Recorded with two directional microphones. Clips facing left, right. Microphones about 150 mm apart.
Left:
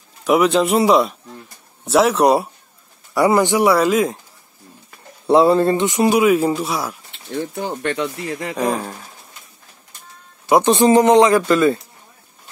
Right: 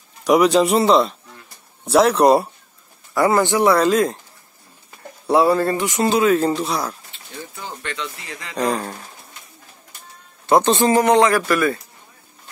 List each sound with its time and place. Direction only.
0.2 s a man's voice: centre (ahead or behind)
3.2 s speech: 15° left (ahead or behind)
5.3 s speech: 20° left (ahead or behind); by 7.0 s 5° left (ahead or behind)
7.3 s speech: 55° left (ahead or behind)
8.5 s a man's voice: 5° left (ahead or behind)
10.4 s speech: 15° left (ahead or behind)